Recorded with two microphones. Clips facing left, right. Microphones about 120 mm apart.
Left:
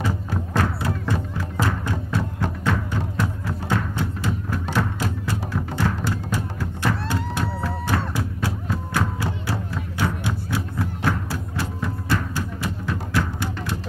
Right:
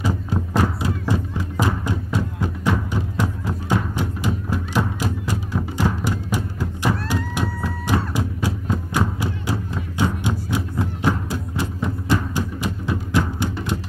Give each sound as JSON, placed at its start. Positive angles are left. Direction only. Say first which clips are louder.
{"t": 0.0, "sound": "music", "louder": "right 2 dB", "side_deg": -15}